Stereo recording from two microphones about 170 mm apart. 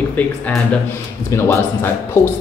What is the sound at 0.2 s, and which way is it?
A man's voice, 10° left (ahead or behind).